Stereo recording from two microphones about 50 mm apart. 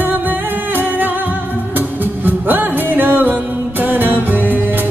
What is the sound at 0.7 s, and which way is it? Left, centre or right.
Music, right.